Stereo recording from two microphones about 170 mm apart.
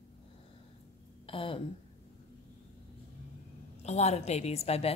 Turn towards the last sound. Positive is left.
turn(degrees=35)  # may be behind; listen again after turning